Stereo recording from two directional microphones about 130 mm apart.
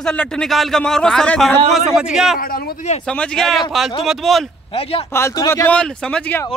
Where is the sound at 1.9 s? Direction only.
5° right (ahead or behind).